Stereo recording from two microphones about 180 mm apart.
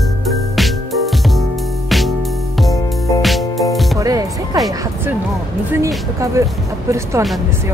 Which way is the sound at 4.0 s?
20° right (ahead or behind).